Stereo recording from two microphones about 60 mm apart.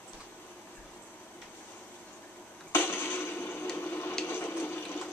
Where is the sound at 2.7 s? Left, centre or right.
Left.